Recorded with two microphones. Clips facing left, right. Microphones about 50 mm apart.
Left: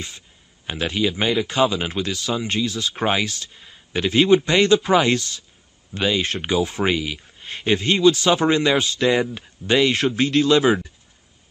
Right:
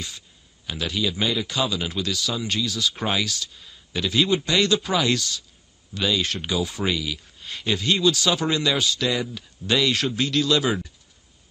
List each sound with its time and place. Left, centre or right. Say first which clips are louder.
0.7 s speech: left 4 dB; left